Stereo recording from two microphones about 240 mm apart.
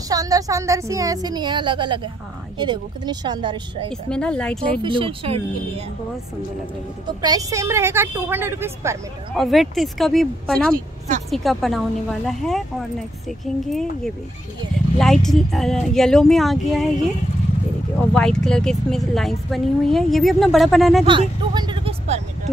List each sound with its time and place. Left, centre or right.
0.1 s a woman's voice: centre
3.9 s a woman's voice: centre
4.8 s speech: right
7.2 s a woman's voice: centre
9.4 s a woman's voice: centre
13.7 s a woman's voice: centre
18.1 s a woman's voice: centre
21.0 s speech: right